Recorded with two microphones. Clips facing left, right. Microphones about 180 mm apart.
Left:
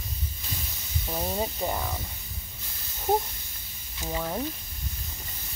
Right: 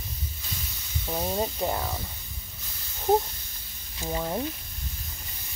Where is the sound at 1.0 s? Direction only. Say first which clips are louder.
Right 2 dB; 5° right (ahead or behind).